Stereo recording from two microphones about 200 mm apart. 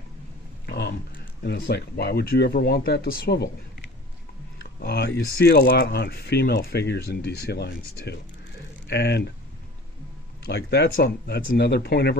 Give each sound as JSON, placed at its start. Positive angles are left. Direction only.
{"t": 0.7, "sound": "a sound", "side_deg": 55}
{"t": 1.4, "sound": "speech", "side_deg": 55}
{"t": 4.8, "sound": "speech", "side_deg": 55}
{"t": 10.4, "sound": "speech", "side_deg": 55}